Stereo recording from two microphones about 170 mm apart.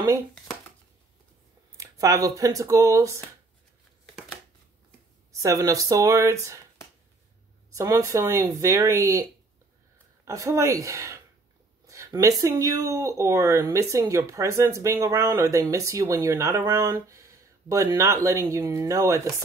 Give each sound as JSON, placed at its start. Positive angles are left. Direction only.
{"t": 1.8, "sound": "speech", "side_deg": -20}
{"t": 5.3, "sound": "speech", "side_deg": -20}
{"t": 7.7, "sound": "speech", "side_deg": -15}
{"t": 10.2, "sound": "speech", "side_deg": -20}